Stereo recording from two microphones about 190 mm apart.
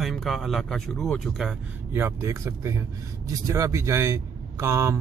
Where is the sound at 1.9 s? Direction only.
10° right (ahead or behind).